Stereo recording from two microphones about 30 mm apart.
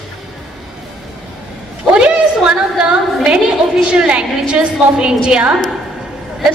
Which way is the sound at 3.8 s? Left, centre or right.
Right.